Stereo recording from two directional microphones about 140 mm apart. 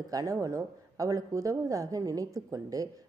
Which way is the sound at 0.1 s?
25° right (ahead or behind).